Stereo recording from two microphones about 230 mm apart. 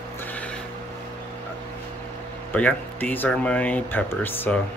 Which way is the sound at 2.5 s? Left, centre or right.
Centre.